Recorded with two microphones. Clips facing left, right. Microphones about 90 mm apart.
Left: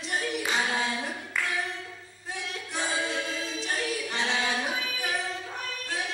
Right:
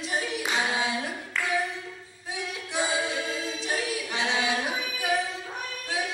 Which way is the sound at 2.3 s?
10° right (ahead or behind).